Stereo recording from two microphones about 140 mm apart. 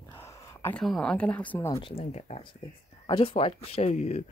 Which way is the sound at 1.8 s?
40° left (ahead or behind).